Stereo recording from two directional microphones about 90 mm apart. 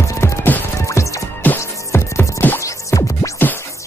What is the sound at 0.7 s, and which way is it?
Music, 35° left (ahead or behind).